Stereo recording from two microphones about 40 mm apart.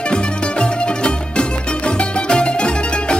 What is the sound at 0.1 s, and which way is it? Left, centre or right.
Music, left.